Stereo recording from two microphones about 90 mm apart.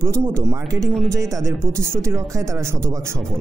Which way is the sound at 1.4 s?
35° right (ahead or behind).